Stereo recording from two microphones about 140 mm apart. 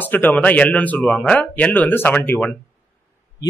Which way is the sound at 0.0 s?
10° left (ahead or behind).